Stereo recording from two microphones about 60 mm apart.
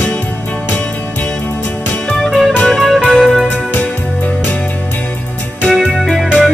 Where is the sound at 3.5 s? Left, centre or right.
Left.